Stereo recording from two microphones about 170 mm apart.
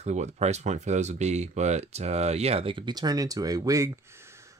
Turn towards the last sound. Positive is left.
turn(degrees=-20)  # may be behind; listen again after turning